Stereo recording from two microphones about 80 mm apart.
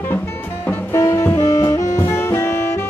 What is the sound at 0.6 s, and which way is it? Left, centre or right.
Saxophone, left.